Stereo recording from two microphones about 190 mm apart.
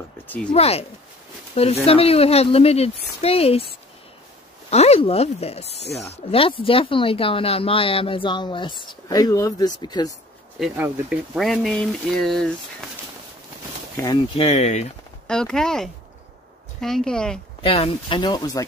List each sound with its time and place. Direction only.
0.5 s speech: 35° left (ahead or behind)
4.6 s speech: 35° left (ahead or behind)
10.6 s speech: 5° right (ahead or behind)
13.9 s speech: 25° left (ahead or behind)
15.2 s speech: 5° left (ahead or behind)
17.6 s speech: 30° left (ahead or behind)